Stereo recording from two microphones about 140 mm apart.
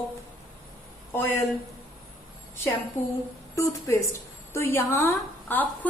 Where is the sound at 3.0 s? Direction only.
20° left (ahead or behind).